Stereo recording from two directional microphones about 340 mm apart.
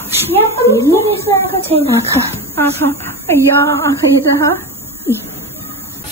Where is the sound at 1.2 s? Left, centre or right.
Centre.